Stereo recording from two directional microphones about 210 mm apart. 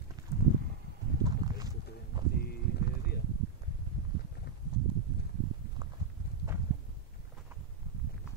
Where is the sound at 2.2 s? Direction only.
20° right (ahead or behind).